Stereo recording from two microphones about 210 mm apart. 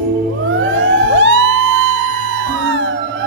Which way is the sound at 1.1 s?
65° right (ahead or behind).